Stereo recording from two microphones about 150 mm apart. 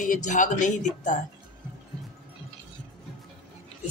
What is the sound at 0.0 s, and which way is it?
Speech, 55° left (ahead or behind).